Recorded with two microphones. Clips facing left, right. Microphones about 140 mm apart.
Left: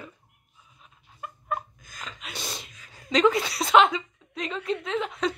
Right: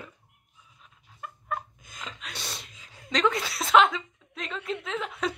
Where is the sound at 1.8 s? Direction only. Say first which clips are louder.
Even; 25° right (ahead or behind).